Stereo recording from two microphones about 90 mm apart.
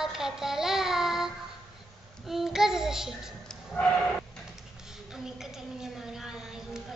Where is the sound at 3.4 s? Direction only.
15° left (ahead or behind).